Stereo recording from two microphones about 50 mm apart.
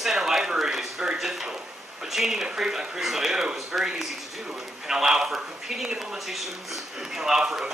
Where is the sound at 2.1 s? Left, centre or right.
Centre.